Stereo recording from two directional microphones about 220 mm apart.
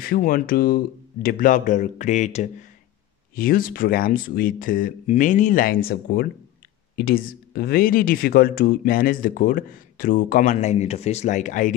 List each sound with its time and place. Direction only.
0.0 s speech: 40° left (ahead or behind)